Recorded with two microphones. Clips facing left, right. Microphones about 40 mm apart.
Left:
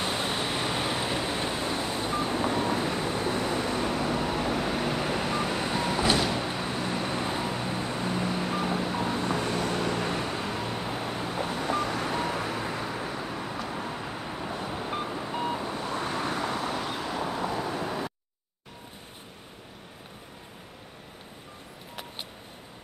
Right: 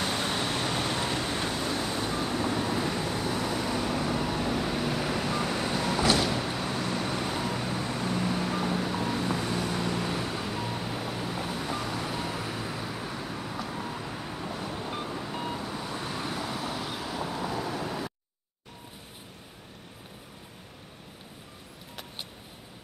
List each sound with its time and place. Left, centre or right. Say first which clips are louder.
0.0 s vehicle: even; centre